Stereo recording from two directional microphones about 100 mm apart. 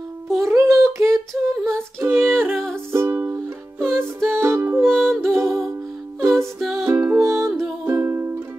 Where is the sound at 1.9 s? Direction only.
20° right (ahead or behind).